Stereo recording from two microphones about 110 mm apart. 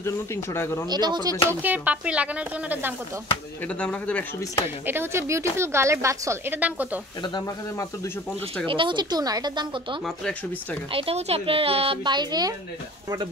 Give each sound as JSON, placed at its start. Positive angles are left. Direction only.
{"t": 0.0, "sound": "speech", "side_deg": 25}
{"t": 0.8, "sound": "speech", "side_deg": -40}
{"t": 1.5, "sound": "speech", "side_deg": -15}
{"t": 3.6, "sound": "speech", "side_deg": 10}
{"t": 4.8, "sound": "a woman's voice", "side_deg": -20}
{"t": 7.3, "sound": "speech", "side_deg": 30}
{"t": 8.6, "sound": "speech", "side_deg": -50}
{"t": 10.0, "sound": "speech", "side_deg": 10}
{"t": 10.9, "sound": "speech", "side_deg": -60}